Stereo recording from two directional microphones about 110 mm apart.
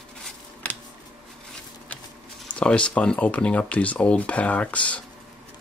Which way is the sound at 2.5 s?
10° left (ahead or behind).